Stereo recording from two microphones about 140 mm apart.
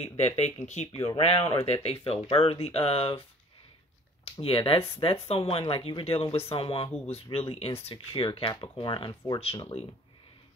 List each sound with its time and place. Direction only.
0.2 s speech: 55° left (ahead or behind)
1.1 s speech: 40° left (ahead or behind)